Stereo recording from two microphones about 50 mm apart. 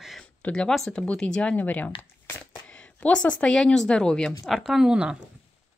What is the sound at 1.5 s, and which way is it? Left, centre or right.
Speech, left.